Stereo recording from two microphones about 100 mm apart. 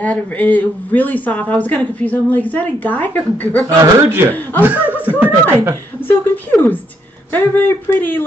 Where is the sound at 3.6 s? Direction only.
30° right (ahead or behind).